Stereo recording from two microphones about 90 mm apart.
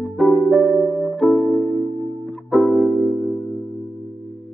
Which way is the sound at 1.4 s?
25° left (ahead or behind).